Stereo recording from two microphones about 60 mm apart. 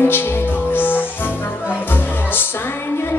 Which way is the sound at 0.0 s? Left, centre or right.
Left.